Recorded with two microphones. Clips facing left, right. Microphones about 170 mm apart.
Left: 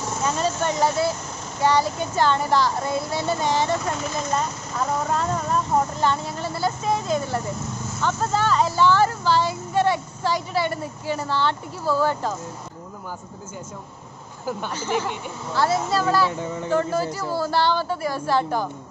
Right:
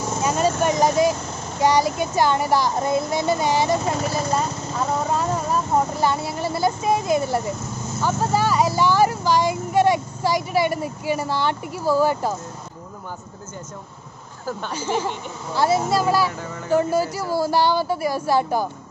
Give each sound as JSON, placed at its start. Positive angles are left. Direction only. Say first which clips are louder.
{"t": 0.2, "sound": "a sound", "louder": "right 3 dB", "side_deg": -15}
{"t": 0.6, "sound": "speech", "louder": "right 4 dB", "side_deg": -15}
{"t": 15.5, "sound": "speech", "louder": "right 2 dB", "side_deg": -15}
{"t": 16.3, "sound": "speech", "louder": "left 3 dB", "side_deg": 20}
{"t": 16.7, "sound": "speech", "louder": "right 4 dB", "side_deg": -10}